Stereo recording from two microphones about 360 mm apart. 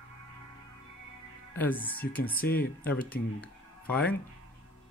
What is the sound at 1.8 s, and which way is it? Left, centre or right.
Speech, centre.